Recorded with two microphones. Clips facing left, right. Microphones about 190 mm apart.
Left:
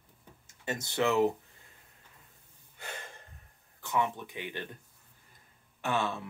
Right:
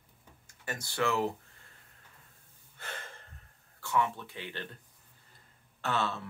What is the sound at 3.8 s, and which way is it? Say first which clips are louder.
Speech: even; 15° left (ahead or behind).